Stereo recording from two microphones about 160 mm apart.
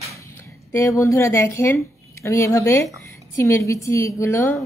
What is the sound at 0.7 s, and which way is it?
A woman's voice, 15° left (ahead or behind).